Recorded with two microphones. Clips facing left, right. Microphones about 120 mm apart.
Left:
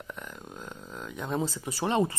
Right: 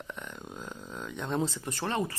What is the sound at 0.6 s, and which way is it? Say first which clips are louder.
Speech: even; centre (ahead or behind).